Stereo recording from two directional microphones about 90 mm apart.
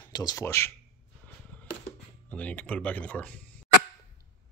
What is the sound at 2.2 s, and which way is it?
Speech, 15° left (ahead or behind).